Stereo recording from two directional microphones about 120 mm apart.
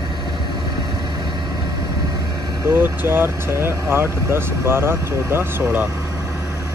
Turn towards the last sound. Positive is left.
turn(degrees=-15)  # may be behind; listen again after turning